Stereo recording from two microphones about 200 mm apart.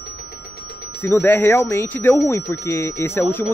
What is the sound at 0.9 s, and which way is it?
Speech, 10° left (ahead or behind).